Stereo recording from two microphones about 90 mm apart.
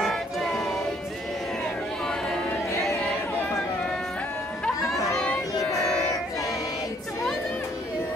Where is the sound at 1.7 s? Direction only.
5° left (ahead or behind).